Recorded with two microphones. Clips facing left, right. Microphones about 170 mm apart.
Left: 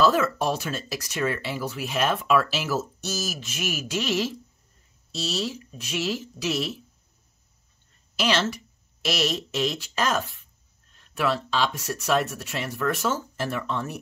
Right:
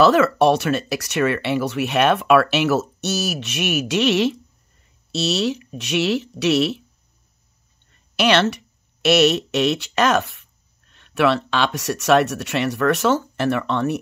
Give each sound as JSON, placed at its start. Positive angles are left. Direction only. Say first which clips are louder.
{"t": 0.0, "sound": "speech", "louder": "right 7 dB", "side_deg": -75}
{"t": 7.9, "sound": "speech", "louder": "right 7 dB", "side_deg": -70}